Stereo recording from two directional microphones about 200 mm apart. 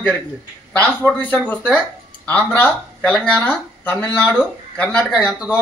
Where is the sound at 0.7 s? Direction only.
10° left (ahead or behind).